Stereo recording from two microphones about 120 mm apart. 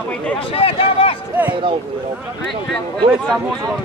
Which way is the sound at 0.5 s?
50° left (ahead or behind).